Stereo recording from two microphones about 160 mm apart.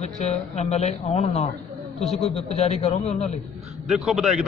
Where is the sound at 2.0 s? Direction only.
Centre (ahead or behind).